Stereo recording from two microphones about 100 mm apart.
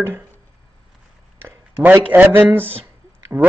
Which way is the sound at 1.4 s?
20° right (ahead or behind).